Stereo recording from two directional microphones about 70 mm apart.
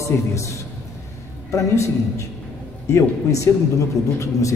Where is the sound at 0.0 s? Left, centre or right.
Left.